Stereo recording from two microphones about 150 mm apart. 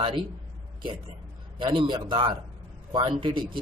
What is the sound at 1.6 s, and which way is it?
Speech, 30° right (ahead or behind).